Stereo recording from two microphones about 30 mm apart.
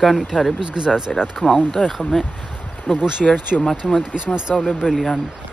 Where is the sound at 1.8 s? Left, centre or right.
Left.